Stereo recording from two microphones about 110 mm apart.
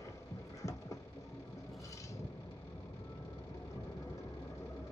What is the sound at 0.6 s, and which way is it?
Throbbing, 30° left (ahead or behind).